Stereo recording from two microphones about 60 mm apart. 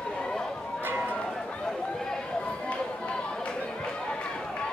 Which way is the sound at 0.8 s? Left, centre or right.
Right.